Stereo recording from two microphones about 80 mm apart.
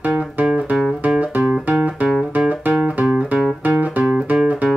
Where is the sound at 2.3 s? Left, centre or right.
Centre.